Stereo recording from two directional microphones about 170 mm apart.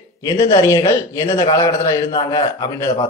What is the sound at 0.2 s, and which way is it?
A man's voice, 25° left (ahead or behind).